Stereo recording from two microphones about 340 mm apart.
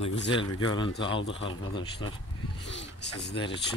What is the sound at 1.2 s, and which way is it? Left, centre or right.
Speech, left.